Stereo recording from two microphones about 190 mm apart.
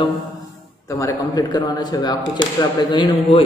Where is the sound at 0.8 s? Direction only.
20° left (ahead or behind).